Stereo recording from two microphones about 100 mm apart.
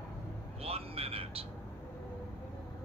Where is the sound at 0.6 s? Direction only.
80° right.